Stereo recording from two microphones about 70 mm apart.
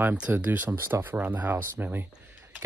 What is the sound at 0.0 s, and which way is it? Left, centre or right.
Speech, right.